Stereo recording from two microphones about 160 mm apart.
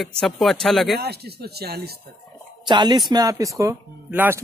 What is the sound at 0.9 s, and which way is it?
Speech, 85° right.